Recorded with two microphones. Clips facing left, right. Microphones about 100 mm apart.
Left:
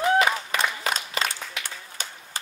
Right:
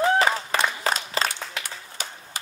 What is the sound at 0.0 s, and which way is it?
Applause, 35° right (ahead or behind).